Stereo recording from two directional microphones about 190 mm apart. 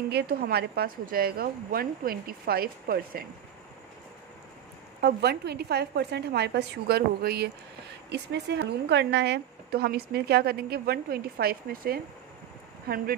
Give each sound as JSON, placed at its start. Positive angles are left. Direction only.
{"t": 0.1, "sound": "a woman's voice", "side_deg": -60}
{"t": 5.0, "sound": "a woman's voice", "side_deg": -60}